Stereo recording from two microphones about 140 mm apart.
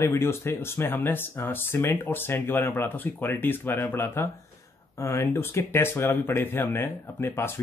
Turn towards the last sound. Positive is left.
turn(degrees=15)  # may be behind; listen again after turning